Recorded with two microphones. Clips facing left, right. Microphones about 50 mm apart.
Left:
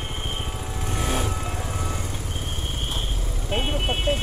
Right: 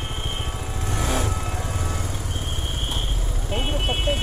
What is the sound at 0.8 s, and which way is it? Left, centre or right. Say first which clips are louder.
Vehicle: right 1 dB; right.